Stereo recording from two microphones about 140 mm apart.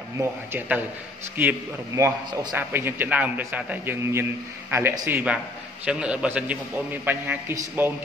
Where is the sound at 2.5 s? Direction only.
15° right (ahead or behind).